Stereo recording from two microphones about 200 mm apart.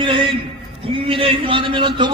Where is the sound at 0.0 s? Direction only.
25° right (ahead or behind).